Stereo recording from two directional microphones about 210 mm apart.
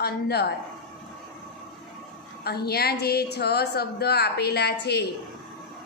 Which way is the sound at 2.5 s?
50° left (ahead or behind).